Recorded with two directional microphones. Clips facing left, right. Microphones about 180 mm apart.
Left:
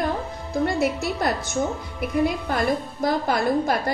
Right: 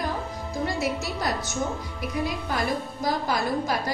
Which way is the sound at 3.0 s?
55° left (ahead or behind).